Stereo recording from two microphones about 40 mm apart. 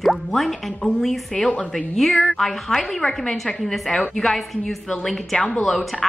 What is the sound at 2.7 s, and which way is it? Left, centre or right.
A woman's voice, centre.